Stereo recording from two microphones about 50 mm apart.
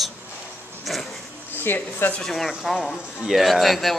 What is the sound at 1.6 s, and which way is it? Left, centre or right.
Speech, left.